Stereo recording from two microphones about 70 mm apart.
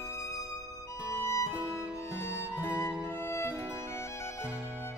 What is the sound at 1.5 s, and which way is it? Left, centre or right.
Music, right.